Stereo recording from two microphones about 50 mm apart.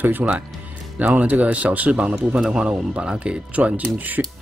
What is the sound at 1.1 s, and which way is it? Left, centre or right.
Speech, right.